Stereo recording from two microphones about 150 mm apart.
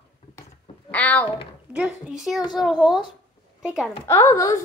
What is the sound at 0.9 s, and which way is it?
Speech, 10° left (ahead or behind).